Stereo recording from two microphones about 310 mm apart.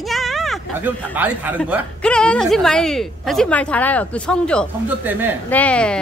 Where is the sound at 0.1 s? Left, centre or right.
Centre.